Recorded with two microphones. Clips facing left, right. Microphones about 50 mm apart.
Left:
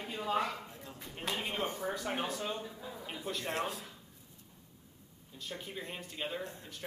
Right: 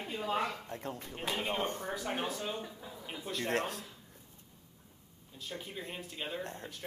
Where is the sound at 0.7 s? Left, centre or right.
Right.